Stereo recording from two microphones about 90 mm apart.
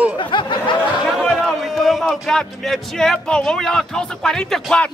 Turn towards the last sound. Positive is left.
turn(degrees=10)  # may be behind; listen again after turning